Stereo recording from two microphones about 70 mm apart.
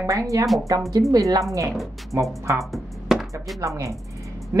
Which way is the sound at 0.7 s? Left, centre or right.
Right.